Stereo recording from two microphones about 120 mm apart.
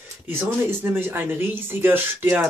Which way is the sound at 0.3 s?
20° right (ahead or behind).